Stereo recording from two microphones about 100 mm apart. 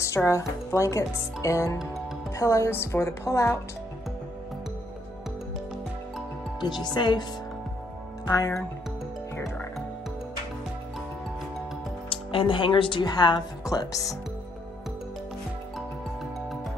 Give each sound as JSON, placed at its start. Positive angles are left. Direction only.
{"t": 0.0, "sound": "a woman's voice", "side_deg": 30}
{"t": 6.6, "sound": "a woman's voice", "side_deg": 45}
{"t": 8.3, "sound": "speech", "side_deg": 35}
{"t": 12.1, "sound": "a woman's voice", "side_deg": 65}